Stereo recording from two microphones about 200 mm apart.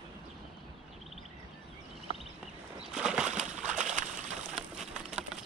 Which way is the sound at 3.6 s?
40° right (ahead or behind).